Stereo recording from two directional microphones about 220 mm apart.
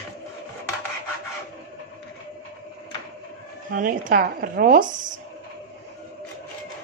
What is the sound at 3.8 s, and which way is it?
A woman's voice, 40° right (ahead or behind).